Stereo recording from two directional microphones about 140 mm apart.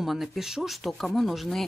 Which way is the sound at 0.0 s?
Centre (ahead or behind).